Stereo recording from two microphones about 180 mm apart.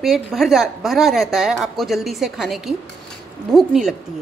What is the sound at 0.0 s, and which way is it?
A woman's voice, centre (ahead or behind).